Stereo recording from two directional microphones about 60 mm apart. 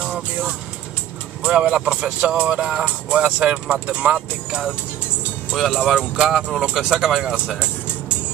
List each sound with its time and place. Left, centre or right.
0.0 s vehicle: centre
1.4 s speech: centre
5.7 s speech: centre